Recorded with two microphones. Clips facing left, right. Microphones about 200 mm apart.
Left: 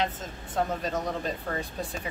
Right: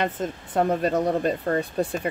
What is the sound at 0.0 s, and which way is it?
Speech, 60° right (ahead or behind).